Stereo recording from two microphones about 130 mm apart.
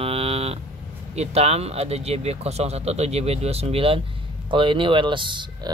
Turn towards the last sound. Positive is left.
turn(degrees=-35)  # may be behind; listen again after turning